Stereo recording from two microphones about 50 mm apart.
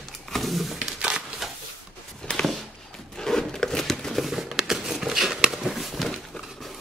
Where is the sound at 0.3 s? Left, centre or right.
Centre.